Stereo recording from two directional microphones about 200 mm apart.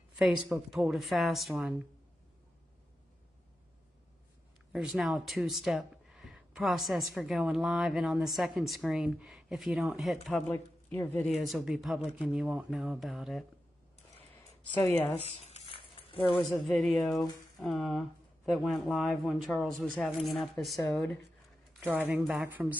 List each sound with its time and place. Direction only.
0.5 s speech: centre (ahead or behind)
4.7 s speech: centre (ahead or behind)
11.4 s speech: centre (ahead or behind)
14.8 s speech: 10° left (ahead or behind)
15.4 s a sound: 30° left (ahead or behind)
16.3 s speech: centre (ahead or behind)